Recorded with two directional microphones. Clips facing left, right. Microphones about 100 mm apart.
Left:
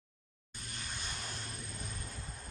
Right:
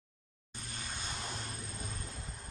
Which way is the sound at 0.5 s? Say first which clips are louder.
Right 1 dB; 30° right (ahead or behind).